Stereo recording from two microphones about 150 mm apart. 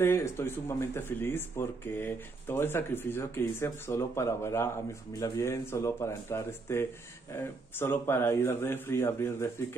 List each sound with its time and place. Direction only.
0.0 s speech: 15° left (ahead or behind)